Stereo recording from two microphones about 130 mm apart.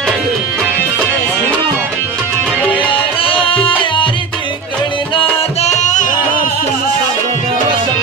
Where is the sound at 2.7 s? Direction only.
40° left (ahead or behind).